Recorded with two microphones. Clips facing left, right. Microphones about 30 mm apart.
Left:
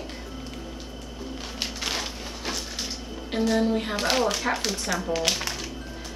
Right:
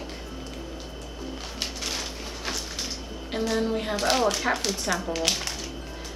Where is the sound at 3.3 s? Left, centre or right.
Centre.